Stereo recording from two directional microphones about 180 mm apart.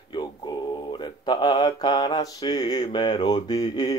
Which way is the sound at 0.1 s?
25° left (ahead or behind).